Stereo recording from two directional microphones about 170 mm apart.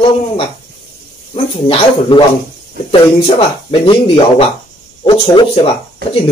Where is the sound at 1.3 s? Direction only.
30° left (ahead or behind).